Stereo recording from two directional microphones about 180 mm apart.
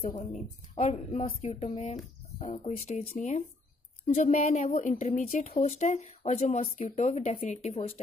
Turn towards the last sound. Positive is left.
turn(degrees=35)  # may be behind; listen again after turning